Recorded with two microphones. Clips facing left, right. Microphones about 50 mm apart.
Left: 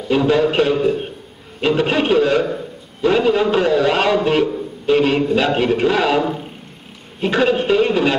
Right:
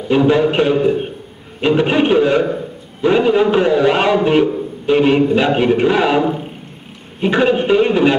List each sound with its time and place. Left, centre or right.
0.1 s a man's voice: centre